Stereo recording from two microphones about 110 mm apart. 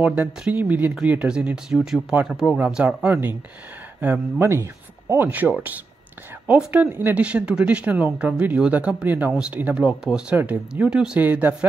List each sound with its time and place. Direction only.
0.0 s speech: 10° right (ahead or behind)
4.0 s speech: 20° right (ahead or behind)